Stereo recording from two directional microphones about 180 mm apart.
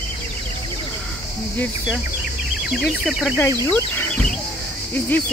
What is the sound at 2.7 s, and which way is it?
Speech, 5° right (ahead or behind).